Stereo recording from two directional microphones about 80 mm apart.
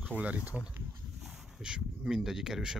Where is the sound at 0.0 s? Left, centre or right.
Centre.